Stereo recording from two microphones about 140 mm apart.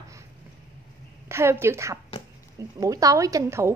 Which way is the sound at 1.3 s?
20° right (ahead or behind).